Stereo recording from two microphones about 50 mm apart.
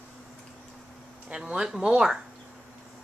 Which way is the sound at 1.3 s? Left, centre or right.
Centre.